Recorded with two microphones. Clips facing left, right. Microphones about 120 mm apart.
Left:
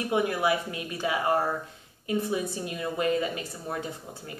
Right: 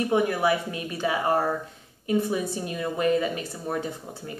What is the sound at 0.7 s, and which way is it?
Speech, 30° right (ahead or behind).